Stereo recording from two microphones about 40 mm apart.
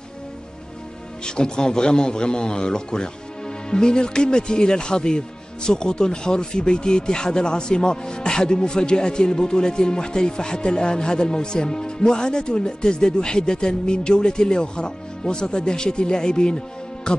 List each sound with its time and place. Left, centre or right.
1.2 s speech: left